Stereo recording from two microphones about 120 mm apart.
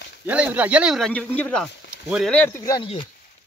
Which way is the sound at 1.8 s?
10° right (ahead or behind).